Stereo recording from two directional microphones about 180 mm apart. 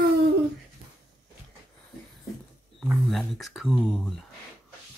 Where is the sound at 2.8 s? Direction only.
Centre (ahead or behind).